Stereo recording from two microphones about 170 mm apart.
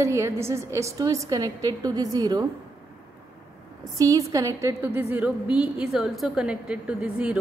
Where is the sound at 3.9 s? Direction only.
20° right (ahead or behind).